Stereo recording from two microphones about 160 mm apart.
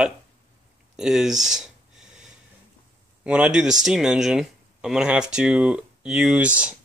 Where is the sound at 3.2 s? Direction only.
5° right (ahead or behind).